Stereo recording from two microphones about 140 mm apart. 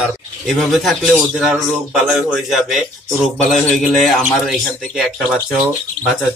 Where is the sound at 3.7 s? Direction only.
Centre (ahead or behind).